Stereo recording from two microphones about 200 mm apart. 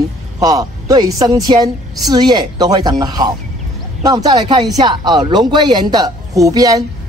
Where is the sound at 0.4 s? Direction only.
15° right (ahead or behind).